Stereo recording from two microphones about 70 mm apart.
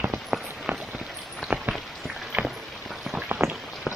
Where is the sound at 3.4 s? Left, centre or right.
Right.